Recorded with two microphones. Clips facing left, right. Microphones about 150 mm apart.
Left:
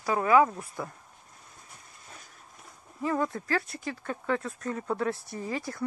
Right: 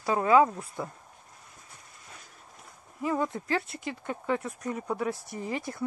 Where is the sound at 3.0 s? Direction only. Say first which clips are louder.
Even; 15° right (ahead or behind).